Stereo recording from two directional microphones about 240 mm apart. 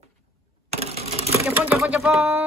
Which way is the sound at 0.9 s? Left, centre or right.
Right.